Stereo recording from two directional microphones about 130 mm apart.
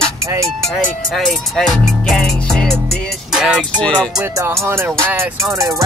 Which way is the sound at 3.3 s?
5° right (ahead or behind).